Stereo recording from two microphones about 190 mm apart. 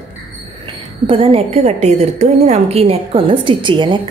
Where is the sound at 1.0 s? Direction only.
30° right (ahead or behind).